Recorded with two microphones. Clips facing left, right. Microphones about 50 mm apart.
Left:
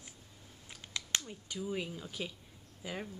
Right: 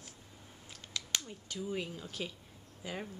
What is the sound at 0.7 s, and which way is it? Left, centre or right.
Finger snapping, left.